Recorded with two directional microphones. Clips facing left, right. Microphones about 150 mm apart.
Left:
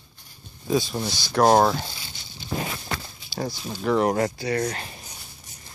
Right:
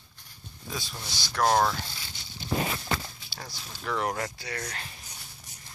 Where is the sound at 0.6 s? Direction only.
25° left (ahead or behind).